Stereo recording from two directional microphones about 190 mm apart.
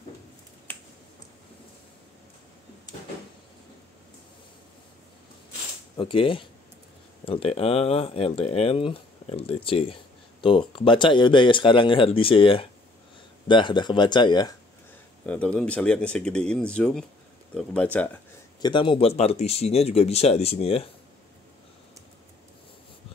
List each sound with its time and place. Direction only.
5.9 s speech: 25° left (ahead or behind)
15.2 s speech: 5° left (ahead or behind)
18.6 s speech: 25° left (ahead or behind)